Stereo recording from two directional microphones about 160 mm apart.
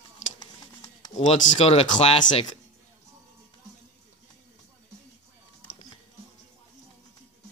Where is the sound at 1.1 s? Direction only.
40° left (ahead or behind).